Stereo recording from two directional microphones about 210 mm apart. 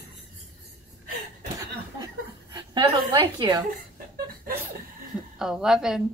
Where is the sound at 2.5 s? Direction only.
20° right (ahead or behind).